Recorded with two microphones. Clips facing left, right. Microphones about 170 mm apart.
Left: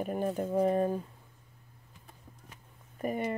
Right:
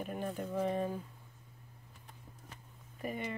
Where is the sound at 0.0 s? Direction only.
45° left (ahead or behind).